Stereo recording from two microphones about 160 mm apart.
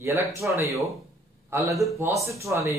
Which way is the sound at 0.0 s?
15° right (ahead or behind).